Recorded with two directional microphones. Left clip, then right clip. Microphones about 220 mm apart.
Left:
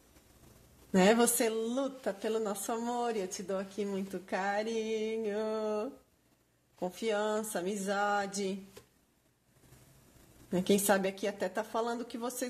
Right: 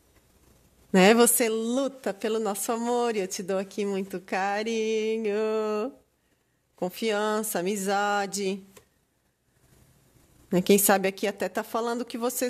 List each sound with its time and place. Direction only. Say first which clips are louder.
0.9 s a woman's voice: right 7 dB; 45° right (ahead or behind)
10.5 s a woman's voice: right 7 dB; 45° right (ahead or behind)